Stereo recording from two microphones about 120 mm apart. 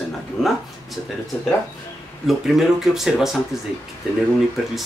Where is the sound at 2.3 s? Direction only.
Centre (ahead or behind).